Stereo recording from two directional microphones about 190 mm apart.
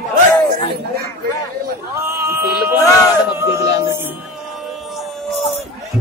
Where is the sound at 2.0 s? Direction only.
15° right (ahead or behind).